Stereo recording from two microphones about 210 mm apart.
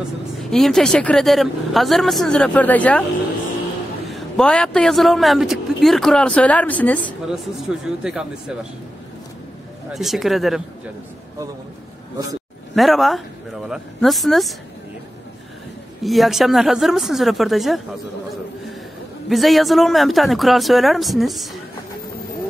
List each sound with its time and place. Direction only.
0.5 s a man's voice: centre (ahead or behind)
4.1 s a man's voice: 5° left (ahead or behind)
7.8 s a man's voice: 5° right (ahead or behind)
9.9 s a man's voice: centre (ahead or behind)
12.7 s a man's voice: centre (ahead or behind)
16.0 s a man's voice: centre (ahead or behind)
19.2 s a man's voice: centre (ahead or behind)